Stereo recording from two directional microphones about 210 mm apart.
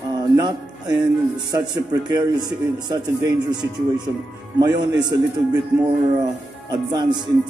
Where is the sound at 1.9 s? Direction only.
20° right (ahead or behind).